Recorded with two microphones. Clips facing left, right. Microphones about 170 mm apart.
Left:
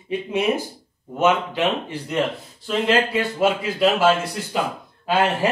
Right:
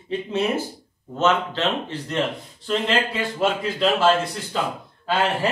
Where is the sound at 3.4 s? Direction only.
5° left (ahead or behind).